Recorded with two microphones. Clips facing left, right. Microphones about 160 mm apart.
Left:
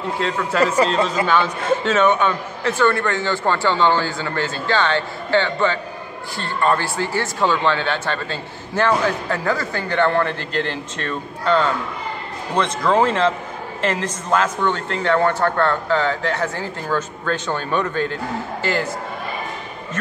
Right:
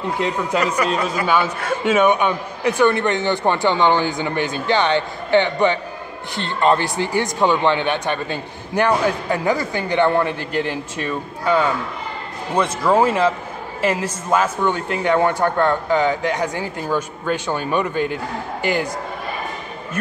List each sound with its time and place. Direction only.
0.2 s speech: 15° right (ahead or behind)